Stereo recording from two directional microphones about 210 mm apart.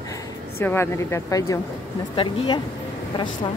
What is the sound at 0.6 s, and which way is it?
Speech, 10° left (ahead or behind).